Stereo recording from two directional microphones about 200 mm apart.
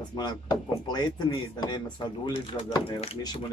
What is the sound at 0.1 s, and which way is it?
Speech, 20° left (ahead or behind).